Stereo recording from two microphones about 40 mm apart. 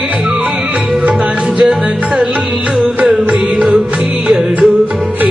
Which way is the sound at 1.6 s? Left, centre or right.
Right.